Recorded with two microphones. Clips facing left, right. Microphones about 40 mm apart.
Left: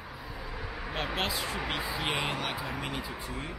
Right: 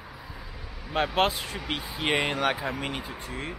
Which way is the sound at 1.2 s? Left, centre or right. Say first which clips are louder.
Right 6 dB; right.